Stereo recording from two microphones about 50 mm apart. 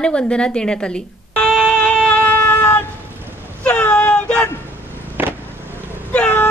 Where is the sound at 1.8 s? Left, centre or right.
Left.